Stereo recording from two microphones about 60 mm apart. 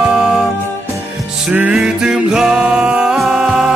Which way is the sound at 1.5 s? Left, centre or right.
Centre.